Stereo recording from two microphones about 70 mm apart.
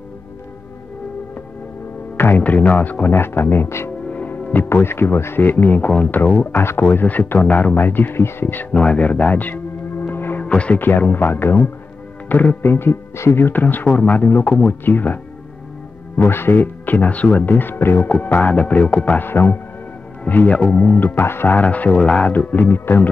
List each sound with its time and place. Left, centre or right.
2.1 s speech: left
4.1 s speech: left
8.8 s music: centre
10.4 s speech: centre
16.2 s speech: left
18.0 s speech: left
19.2 s speech: left
21.5 s speech: left
22.3 s speech: left